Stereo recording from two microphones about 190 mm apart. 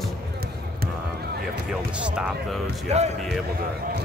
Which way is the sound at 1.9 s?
5° right (ahead or behind).